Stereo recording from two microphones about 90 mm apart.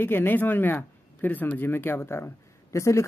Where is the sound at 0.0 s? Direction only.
25° left (ahead or behind).